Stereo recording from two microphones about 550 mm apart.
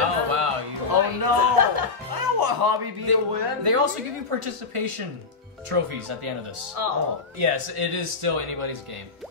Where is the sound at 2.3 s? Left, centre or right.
Right.